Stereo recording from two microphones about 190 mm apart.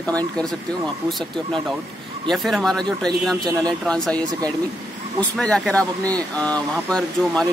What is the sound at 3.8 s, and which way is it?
Speech, 5° left (ahead or behind).